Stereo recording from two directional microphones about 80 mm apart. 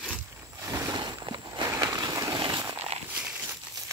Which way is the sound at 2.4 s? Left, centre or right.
Right.